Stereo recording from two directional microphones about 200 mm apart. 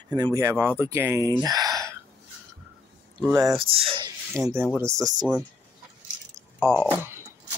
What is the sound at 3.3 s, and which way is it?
Speech, 20° right (ahead or behind).